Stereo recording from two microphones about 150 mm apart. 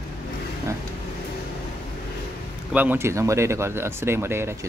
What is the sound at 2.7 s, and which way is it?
Speech, 10° right (ahead or behind).